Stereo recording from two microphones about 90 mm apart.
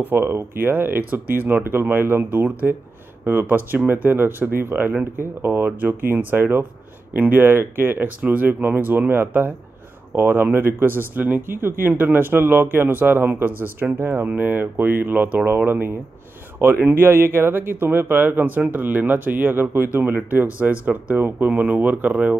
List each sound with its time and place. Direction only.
0.0 s speech: 25° right (ahead or behind)